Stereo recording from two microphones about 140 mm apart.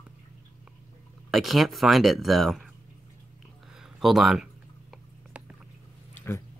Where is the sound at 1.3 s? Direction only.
Centre (ahead or behind).